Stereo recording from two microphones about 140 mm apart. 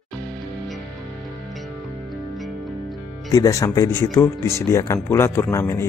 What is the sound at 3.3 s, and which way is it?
Speech, 25° left (ahead or behind).